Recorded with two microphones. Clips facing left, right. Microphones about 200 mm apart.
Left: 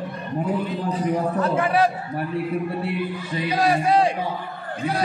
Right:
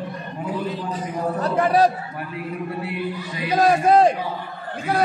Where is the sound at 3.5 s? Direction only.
45° right (ahead or behind).